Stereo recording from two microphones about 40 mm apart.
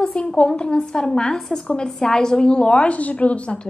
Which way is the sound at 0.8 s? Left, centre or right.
Centre.